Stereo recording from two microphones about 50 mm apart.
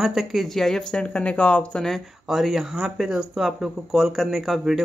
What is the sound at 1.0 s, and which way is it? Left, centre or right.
Speech, left.